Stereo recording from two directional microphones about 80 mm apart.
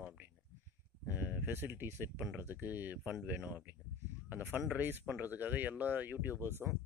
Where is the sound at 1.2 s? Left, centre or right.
Right.